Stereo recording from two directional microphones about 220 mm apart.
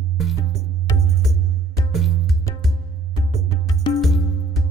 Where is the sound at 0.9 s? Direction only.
15° left (ahead or behind).